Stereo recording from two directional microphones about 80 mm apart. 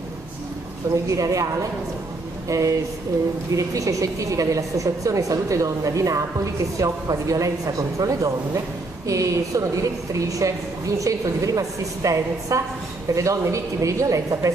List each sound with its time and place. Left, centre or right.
1.0 s a woman's voice: right